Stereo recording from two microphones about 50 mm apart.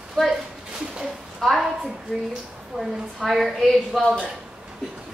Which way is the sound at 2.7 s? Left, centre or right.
Right.